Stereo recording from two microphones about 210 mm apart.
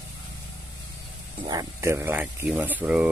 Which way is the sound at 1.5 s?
15° right (ahead or behind).